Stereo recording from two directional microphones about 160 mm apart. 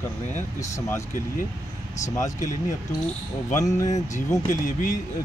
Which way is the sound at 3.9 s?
45° left (ahead or behind).